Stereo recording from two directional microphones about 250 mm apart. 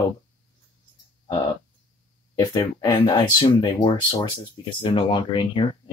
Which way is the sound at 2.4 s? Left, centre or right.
Centre.